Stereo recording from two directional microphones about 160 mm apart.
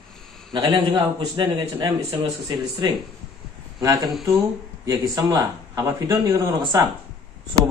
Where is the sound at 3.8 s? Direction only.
20° right (ahead or behind).